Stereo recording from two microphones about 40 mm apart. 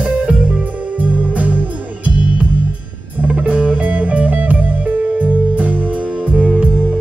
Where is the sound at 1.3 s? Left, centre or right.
Right.